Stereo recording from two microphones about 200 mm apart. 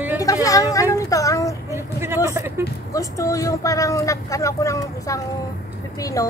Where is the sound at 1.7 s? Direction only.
15° right (ahead or behind).